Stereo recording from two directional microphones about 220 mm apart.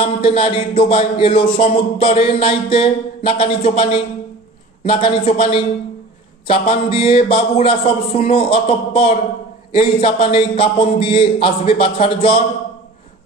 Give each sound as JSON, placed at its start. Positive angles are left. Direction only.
{"t": 0.0, "sound": "a man's voice", "side_deg": 25}